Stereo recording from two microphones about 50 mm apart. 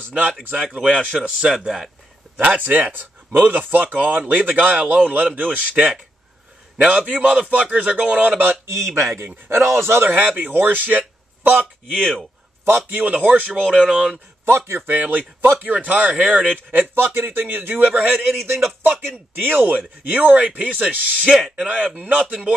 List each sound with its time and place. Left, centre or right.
0.4 s speech: right
0.7 s speech: right
1.4 s speech: centre
2.4 s speech: right
8.6 s a man's voice: right
10.0 s a man's voice: right
12.6 s speech: right
13.0 s speech: right
14.4 s a man's voice: right
14.9 s speech: right
16.9 s speech: right
17.8 s speech: right
18.9 s speech: right
20.1 s speech: right